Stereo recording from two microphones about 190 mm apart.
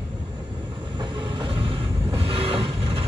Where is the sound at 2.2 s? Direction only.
30° right (ahead or behind).